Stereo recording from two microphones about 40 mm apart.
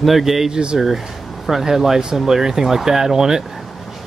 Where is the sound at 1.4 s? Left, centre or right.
Centre.